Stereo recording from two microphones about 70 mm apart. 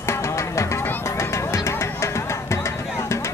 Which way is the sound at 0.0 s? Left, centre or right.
Left.